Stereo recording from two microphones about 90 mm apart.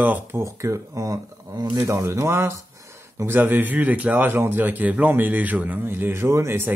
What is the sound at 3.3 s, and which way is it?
Speech, 20° right (ahead or behind).